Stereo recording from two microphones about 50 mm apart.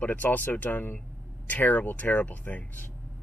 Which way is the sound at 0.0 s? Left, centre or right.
Left.